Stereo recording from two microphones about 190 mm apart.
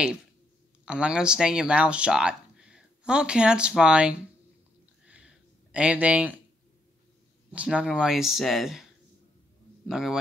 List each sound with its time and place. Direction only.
0.8 s speech: 5° right (ahead or behind)
5.0 s a sound: 5° right (ahead or behind)
7.5 s speech: 5° right (ahead or behind)
9.8 s speech: centre (ahead or behind)